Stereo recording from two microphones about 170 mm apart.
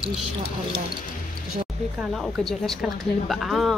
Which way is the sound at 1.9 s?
Centre (ahead or behind).